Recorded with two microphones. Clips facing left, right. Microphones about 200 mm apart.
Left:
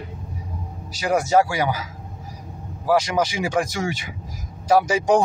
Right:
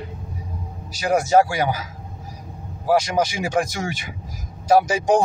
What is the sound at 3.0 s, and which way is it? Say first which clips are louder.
Speech: even; 50° right (ahead or behind).